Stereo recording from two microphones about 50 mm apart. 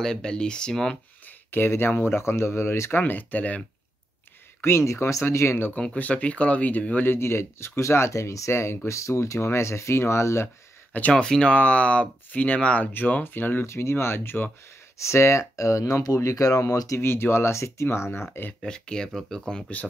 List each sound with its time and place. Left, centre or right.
0.0 s speech: centre
1.7 s speech: left
2.9 s speech: left
4.6 s speech: left
5.9 s speech: left
7.1 s speech: left
8.8 s speech: left
10.9 s speech: left
11.1 s speech: centre; by 13.7 s left
13.7 s speech: left
15.0 s speech: left
17.0 s speech: left
17.8 s speech: left
18.6 s speech: centre